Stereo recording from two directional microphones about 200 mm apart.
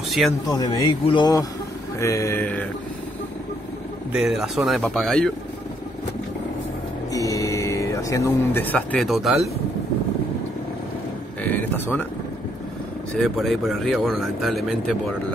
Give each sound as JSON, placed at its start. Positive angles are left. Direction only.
{"t": 0.5, "sound": "speech", "side_deg": 20}
{"t": 2.0, "sound": "mantra", "side_deg": 15}
{"t": 4.1, "sound": "speech", "side_deg": 0}
{"t": 7.1, "sound": "speech", "side_deg": 15}
{"t": 11.4, "sound": "a sound", "side_deg": 10}
{"t": 13.2, "sound": "speech", "side_deg": 0}